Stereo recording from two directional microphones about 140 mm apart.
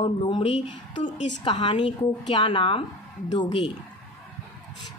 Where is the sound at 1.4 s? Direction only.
35° left (ahead or behind).